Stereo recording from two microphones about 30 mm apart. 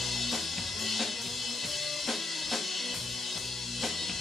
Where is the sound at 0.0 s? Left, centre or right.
Centre.